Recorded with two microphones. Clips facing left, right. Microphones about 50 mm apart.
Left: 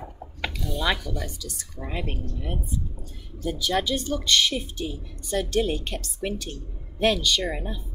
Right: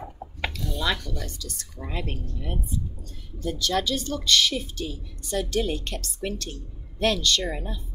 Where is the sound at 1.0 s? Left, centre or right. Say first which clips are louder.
Left 2 dB; centre.